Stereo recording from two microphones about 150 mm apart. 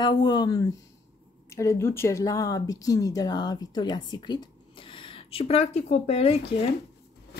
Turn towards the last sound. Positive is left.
turn(degrees=40)  # may be behind; listen again after turning